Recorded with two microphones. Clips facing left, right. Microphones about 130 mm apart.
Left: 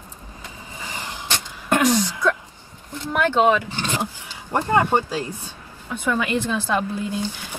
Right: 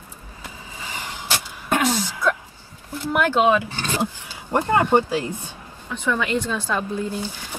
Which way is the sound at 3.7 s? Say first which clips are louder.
Right 1 dB; 15° left (ahead or behind).